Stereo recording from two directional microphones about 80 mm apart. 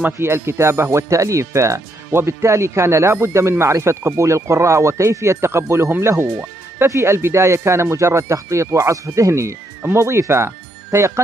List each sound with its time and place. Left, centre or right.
0.0 s speech: right